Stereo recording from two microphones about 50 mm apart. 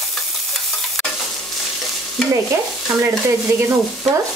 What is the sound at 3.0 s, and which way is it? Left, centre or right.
Stir, right.